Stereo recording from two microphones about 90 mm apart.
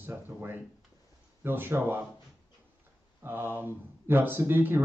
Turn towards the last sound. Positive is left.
turn(degrees=-25)  # may be behind; listen again after turning